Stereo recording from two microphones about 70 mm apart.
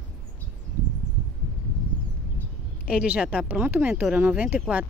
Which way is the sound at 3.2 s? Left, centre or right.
Right.